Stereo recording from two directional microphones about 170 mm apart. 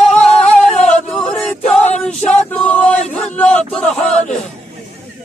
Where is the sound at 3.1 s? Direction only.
5° left (ahead or behind).